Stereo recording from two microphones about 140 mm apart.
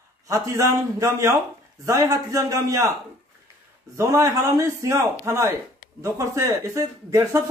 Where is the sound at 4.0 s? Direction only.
20° right (ahead or behind).